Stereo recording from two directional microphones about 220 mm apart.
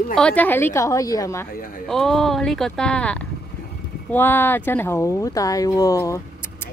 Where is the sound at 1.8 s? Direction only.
Centre (ahead or behind).